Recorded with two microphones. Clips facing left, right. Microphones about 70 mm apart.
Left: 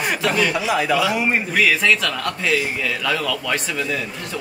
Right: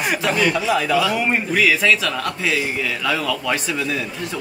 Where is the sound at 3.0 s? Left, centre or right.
Centre.